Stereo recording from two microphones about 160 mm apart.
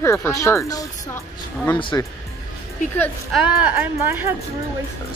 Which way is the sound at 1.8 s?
30° left (ahead or behind).